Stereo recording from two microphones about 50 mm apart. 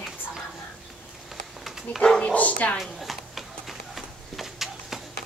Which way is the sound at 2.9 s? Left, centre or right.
Centre.